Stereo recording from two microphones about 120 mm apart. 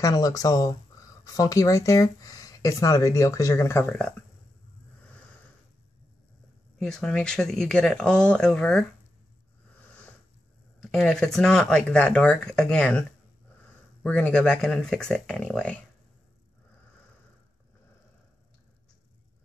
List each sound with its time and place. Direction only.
0.0 s speech: 30° left (ahead or behind)
6.8 s speech: 5° left (ahead or behind)
10.8 s speech: 5° left (ahead or behind)
14.0 s speech: 10° left (ahead or behind)